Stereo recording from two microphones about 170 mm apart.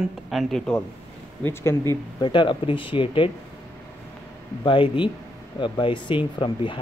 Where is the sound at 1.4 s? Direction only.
15° left (ahead or behind).